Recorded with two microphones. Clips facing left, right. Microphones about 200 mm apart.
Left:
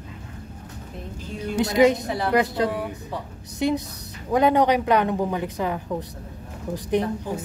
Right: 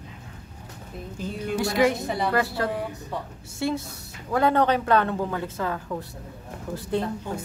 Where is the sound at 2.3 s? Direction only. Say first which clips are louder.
Left 7 dB; 20° left (ahead or behind).